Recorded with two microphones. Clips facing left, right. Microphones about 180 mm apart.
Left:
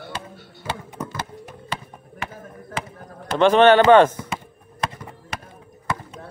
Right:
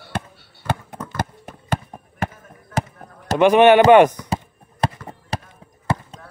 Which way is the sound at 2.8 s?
45° right (ahead or behind).